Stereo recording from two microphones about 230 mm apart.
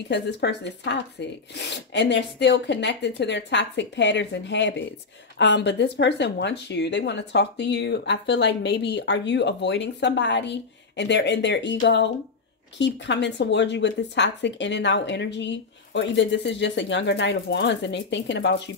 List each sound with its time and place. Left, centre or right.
0.1 s speech: left